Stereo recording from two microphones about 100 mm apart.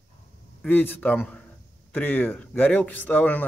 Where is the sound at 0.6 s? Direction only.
20° left (ahead or behind).